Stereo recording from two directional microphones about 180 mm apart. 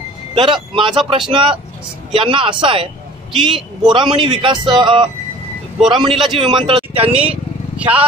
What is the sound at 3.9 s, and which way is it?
Speech, 25° right (ahead or behind).